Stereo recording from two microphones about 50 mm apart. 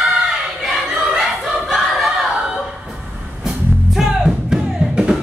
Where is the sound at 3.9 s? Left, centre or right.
Centre.